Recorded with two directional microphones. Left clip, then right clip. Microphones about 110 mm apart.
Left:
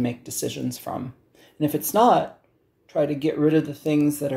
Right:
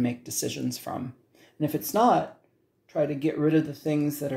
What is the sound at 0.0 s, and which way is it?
Speech, 15° left (ahead or behind).